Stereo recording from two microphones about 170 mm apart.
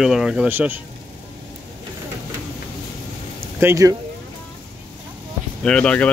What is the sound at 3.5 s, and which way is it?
Speech, 15° right (ahead or behind).